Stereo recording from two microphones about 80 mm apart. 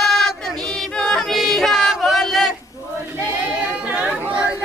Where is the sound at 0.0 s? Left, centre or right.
Centre.